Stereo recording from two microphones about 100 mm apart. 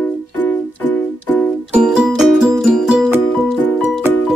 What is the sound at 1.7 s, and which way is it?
Music, 5° right (ahead or behind).